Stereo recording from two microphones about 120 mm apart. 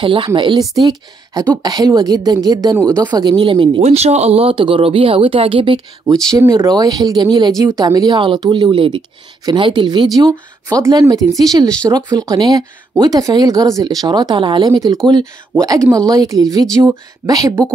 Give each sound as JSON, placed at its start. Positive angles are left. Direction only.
{"t": 0.0, "sound": "a woman's voice", "side_deg": -40}
{"t": 3.8, "sound": "speech", "side_deg": -65}
{"t": 6.3, "sound": "a woman's voice", "side_deg": -25}